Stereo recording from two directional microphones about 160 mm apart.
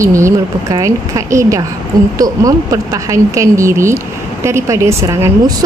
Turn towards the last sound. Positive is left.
turn(degrees=-15)  # may be behind; listen again after turning